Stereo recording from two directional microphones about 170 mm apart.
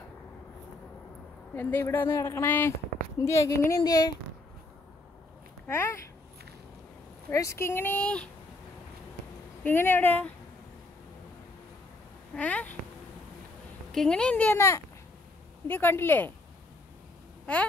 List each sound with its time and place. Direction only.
1.5 s a woman's voice: 10° left (ahead or behind)
5.7 s a woman's voice: 15° left (ahead or behind)
7.2 s a woman's voice: 15° left (ahead or behind)
9.6 s a woman's voice: 10° left (ahead or behind)
12.4 s a woman's voice: 10° left (ahead or behind)
13.9 s a woman's voice: 5° left (ahead or behind)
17.5 s a woman's voice: 10° left (ahead or behind)